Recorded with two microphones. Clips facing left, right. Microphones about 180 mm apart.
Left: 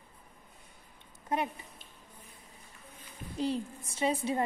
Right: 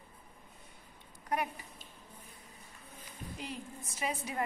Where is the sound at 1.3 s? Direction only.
25° left (ahead or behind).